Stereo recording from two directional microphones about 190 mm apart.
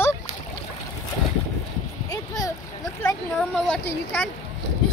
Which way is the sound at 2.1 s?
20° left (ahead or behind).